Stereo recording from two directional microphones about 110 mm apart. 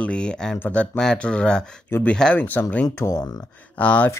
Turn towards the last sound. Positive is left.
turn(degrees=10)  # may be behind; listen again after turning